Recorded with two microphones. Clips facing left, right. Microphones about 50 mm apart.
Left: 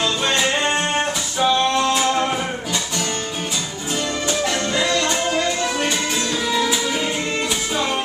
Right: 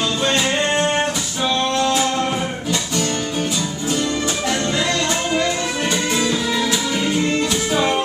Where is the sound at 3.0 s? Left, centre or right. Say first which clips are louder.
Right 3 dB; centre.